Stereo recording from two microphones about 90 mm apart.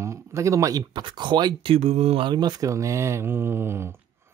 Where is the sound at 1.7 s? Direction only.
85° right; by 3.9 s 30° right (ahead or behind).